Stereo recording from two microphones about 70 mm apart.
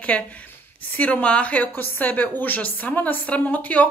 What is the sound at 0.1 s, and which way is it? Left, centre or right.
A woman's voice, centre.